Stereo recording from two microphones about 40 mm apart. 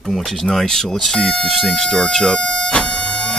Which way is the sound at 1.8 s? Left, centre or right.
Centre.